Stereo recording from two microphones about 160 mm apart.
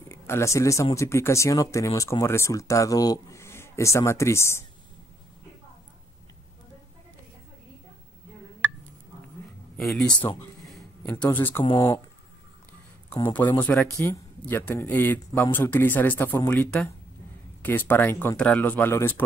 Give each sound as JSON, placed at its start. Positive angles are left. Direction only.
{"t": 0.1, "sound": "speech", "side_deg": 15}
{"t": 9.8, "sound": "speech", "side_deg": 0}
{"t": 11.6, "sound": "speech", "side_deg": 25}
{"t": 13.1, "sound": "speech", "side_deg": 25}
{"t": 13.9, "sound": "speech", "side_deg": 15}